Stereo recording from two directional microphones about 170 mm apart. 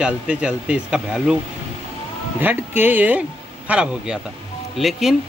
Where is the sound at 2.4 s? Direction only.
10° right (ahead or behind).